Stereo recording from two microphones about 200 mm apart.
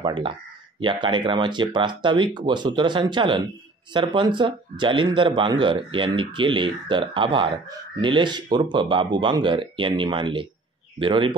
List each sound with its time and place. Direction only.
0.0 s speech: 25° right (ahead or behind)